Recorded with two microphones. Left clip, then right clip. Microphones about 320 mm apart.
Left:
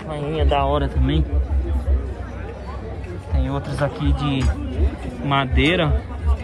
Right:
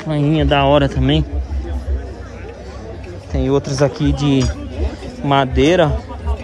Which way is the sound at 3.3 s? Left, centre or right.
Right.